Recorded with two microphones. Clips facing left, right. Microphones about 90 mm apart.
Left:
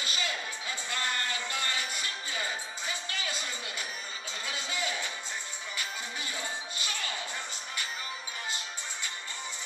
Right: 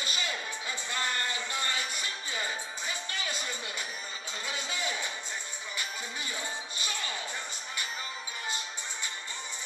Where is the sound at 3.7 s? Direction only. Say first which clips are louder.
Even; 30° right (ahead or behind).